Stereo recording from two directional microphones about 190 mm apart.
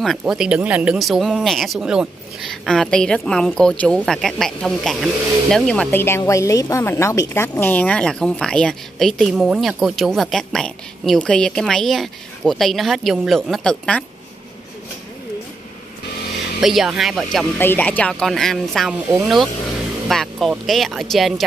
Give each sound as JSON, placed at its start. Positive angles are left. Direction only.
{"t": 0.0, "sound": "a woman's voice", "side_deg": 0}
{"t": 16.6, "sound": "a woman's voice", "side_deg": 0}